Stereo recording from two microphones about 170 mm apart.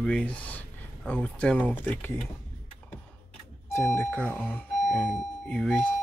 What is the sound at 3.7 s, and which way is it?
Speech, 15° left (ahead or behind).